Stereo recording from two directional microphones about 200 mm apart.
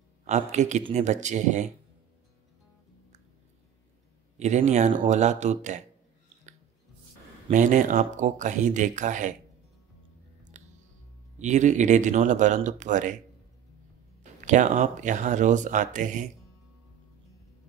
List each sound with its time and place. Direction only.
0.2 s speech: 35° right (ahead or behind)
4.4 s speech: 35° right (ahead or behind)
7.5 s speech: 40° right (ahead or behind)
10.5 s music: 35° right (ahead or behind)
11.3 s speech: 35° right (ahead or behind)
14.4 s speech: 40° right (ahead or behind)